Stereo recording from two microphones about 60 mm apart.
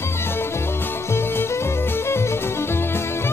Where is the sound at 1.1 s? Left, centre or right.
Left.